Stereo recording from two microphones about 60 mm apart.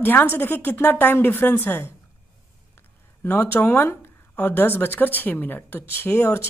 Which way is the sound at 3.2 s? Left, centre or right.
Left.